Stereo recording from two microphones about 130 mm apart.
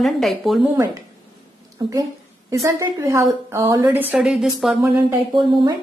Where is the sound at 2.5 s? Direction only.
25° right (ahead or behind); by 4.8 s 5° right (ahead or behind).